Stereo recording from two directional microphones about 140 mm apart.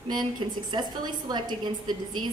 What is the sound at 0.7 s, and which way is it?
A woman's voice, 30° right (ahead or behind).